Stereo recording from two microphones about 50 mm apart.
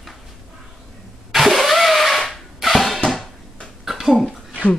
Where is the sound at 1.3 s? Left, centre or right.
Centre.